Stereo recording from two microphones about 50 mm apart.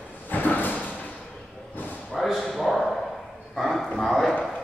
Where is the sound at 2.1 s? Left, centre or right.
Centre.